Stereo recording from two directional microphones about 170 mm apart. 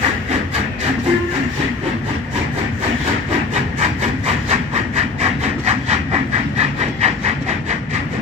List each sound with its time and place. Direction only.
4.5 s wood: 40° right (ahead or behind)
6.6 s train: 40° right (ahead or behind)